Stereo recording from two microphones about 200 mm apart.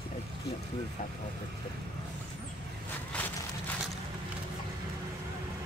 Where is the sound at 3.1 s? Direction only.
10° left (ahead or behind).